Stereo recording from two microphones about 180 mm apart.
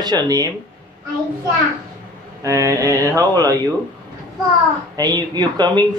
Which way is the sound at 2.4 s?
15° right (ahead or behind).